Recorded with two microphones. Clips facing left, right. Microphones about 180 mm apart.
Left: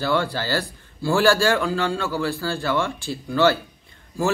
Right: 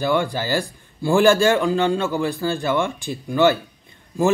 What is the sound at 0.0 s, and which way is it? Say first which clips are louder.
A man's voice: right 2 dB; 15° right (ahead or behind).